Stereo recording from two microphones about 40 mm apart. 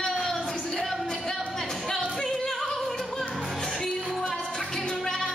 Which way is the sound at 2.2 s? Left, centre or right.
Centre.